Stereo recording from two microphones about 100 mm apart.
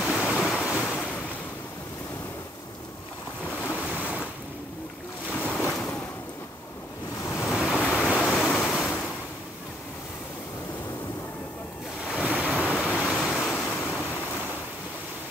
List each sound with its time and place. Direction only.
0.0 s waves: 5° right (ahead or behind)
0.8 s waves: 10° left (ahead or behind)
3.4 s waves: 10° left (ahead or behind)
5.3 s boat: 15° left (ahead or behind)
7.3 s waves: 5° right (ahead or behind)
12.0 s waves: 10° right (ahead or behind)
12.7 s vehicle: 5° right (ahead or behind)
13.1 s waves: 5° right (ahead or behind)
13.4 s waves: 15° left (ahead or behind)